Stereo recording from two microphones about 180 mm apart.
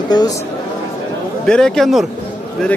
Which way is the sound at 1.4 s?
5° left (ahead or behind).